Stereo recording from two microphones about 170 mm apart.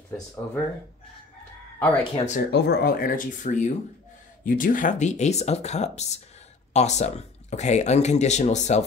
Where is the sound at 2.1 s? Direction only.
45° left (ahead or behind).